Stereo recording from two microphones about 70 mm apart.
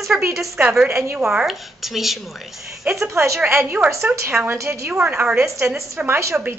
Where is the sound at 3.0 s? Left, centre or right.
Right.